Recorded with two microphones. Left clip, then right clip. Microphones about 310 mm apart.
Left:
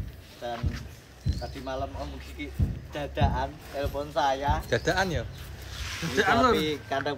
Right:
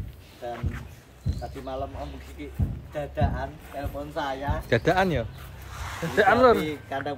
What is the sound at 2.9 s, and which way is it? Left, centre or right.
Speech, centre.